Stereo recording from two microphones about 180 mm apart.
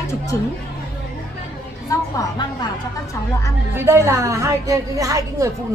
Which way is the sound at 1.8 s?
20° left (ahead or behind).